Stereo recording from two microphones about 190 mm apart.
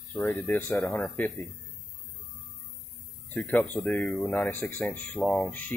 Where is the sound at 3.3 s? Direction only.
5° left (ahead or behind).